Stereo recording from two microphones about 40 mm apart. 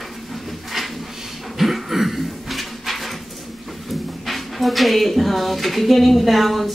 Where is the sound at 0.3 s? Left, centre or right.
Centre.